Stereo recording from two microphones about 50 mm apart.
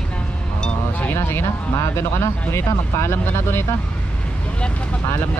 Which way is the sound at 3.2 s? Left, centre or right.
Left.